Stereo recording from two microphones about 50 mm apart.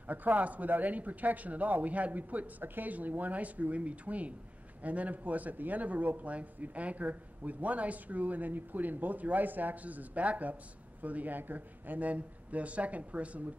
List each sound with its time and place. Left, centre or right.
0.1 s a man's voice: right